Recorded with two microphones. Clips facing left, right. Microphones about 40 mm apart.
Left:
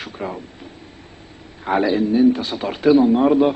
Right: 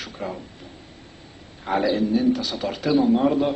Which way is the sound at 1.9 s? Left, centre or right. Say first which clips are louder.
Left 7 dB; left.